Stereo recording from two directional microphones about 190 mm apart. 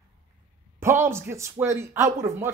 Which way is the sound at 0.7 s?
15° right (ahead or behind).